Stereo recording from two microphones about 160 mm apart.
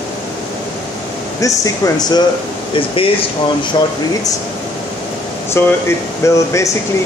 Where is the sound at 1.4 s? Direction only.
20° left (ahead or behind).